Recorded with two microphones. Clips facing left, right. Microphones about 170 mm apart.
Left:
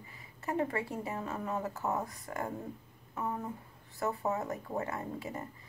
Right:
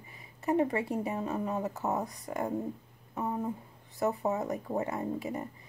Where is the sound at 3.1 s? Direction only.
20° right (ahead or behind).